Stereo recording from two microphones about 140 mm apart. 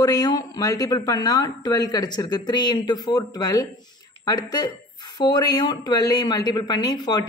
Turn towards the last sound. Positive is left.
turn(degrees=30)  # may be behind; listen again after turning